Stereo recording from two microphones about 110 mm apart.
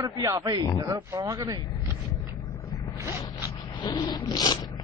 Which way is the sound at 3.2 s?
35° left (ahead or behind).